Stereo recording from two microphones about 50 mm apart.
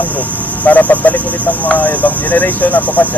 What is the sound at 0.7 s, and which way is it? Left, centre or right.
Speech, left.